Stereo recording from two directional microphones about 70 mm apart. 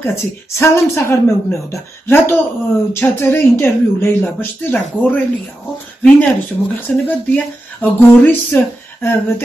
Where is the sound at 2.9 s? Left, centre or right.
Left.